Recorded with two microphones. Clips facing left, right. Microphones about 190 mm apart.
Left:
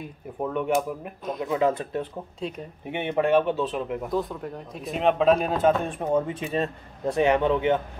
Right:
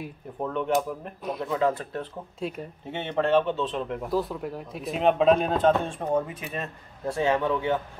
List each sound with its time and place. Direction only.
0.4 s speech: 10° left (ahead or behind)
6.2 s speech: 30° left (ahead or behind)
7.1 s a man's voice: 20° left (ahead or behind)